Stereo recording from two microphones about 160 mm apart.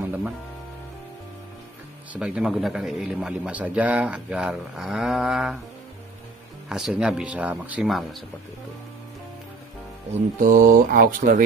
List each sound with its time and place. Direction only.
0.0 s music: 10° right (ahead or behind)
2.1 s a man's voice: 5° right (ahead or behind)
6.7 s a man's voice: 5° right (ahead or behind)
10.4 s speech: 60° right (ahead or behind)